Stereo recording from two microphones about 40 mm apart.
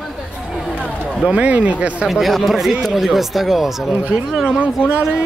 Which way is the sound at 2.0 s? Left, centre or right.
Centre.